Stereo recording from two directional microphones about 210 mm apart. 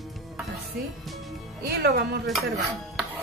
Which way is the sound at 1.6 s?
50° right (ahead or behind).